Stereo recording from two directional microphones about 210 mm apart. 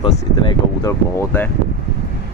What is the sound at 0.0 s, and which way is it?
Speech, 25° left (ahead or behind).